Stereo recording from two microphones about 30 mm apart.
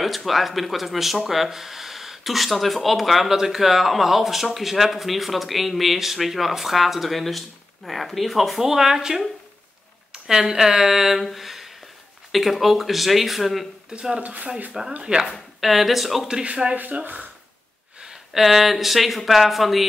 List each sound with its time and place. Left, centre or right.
0.0 s speech: centre
3.3 s speech: centre
8.5 s speech: centre
10.3 s speech: centre
14.2 s speech: right
14.7 s speech: right
15.6 s speech: centre
16.6 s speech: right
18.1 s speech: centre